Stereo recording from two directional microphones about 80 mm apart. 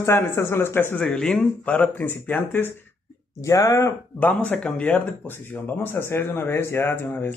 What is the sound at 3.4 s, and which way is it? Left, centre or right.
Speech, left.